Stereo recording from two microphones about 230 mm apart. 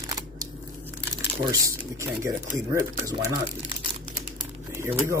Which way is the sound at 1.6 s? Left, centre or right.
Centre.